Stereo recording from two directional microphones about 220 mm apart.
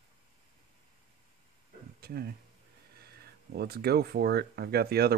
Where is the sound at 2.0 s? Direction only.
45° right (ahead or behind).